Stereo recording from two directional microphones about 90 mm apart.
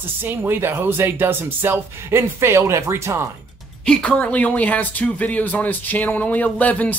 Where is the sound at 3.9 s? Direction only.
15° left (ahead or behind).